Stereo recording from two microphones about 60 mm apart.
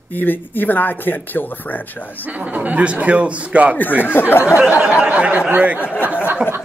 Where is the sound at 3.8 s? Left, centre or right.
Left.